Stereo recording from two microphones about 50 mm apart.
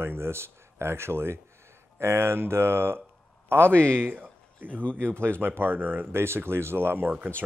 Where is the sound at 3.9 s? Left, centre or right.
Right.